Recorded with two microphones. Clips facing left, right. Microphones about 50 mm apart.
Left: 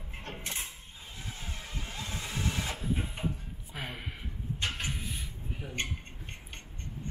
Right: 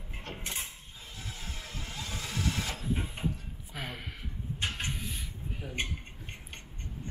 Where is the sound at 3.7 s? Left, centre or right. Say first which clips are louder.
Even; centre.